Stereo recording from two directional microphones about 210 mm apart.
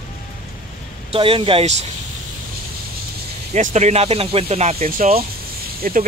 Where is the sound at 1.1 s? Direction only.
25° right (ahead or behind).